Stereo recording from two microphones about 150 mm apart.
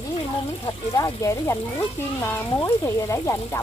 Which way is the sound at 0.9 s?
20° left (ahead or behind).